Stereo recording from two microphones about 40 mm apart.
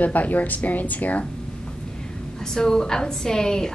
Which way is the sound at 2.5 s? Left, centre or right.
Centre.